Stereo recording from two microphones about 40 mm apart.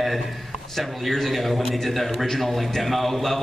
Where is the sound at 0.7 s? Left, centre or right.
Centre.